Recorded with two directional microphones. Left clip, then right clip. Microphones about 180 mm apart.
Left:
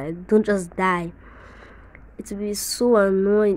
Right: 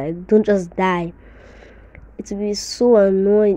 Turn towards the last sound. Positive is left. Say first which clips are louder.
# right 4 dB
turn(degrees=-5)  # may be behind; listen again after turning